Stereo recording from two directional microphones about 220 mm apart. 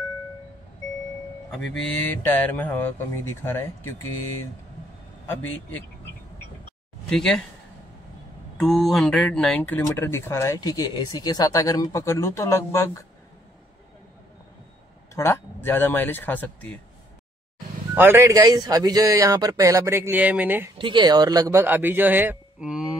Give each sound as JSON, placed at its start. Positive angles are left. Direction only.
{"t": 2.0, "sound": "speech", "side_deg": 5}
{"t": 5.2, "sound": "speech", "side_deg": 10}
{"t": 7.1, "sound": "speech", "side_deg": 0}
{"t": 8.5, "sound": "speech", "side_deg": 0}
{"t": 15.1, "sound": "speech", "side_deg": 10}
{"t": 17.9, "sound": "a man's voice", "side_deg": -10}
{"t": 20.7, "sound": "a man's voice", "side_deg": -20}